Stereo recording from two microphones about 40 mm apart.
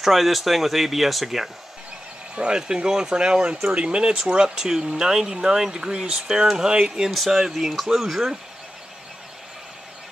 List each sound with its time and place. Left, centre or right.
0.0 s speech: centre
2.3 s speech: right
7.5 s speech: centre